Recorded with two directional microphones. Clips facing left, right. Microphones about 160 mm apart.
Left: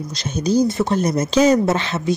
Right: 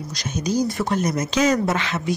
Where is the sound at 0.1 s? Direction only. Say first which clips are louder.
Left 5 dB; 30° left (ahead or behind).